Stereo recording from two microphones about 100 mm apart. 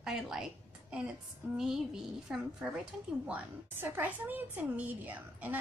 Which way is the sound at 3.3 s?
20° right (ahead or behind).